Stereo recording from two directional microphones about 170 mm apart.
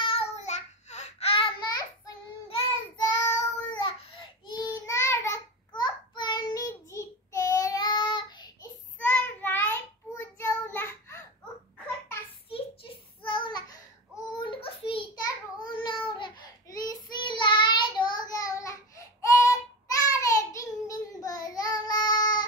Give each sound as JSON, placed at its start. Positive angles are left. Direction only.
{"t": 0.0, "sound": "child singing", "side_deg": 35}
{"t": 3.0, "sound": "child singing", "side_deg": 20}
{"t": 5.7, "sound": "child singing", "side_deg": 25}
{"t": 9.0, "sound": "child singing", "side_deg": 10}
{"t": 12.4, "sound": "child singing", "side_deg": 30}
{"t": 14.3, "sound": "a sound", "side_deg": 30}
{"t": 20.1, "sound": "child singing", "side_deg": 20}